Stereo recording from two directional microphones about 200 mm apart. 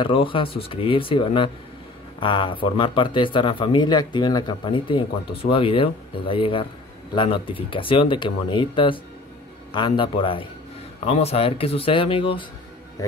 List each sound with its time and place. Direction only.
0.0 s speech: 25° left (ahead or behind)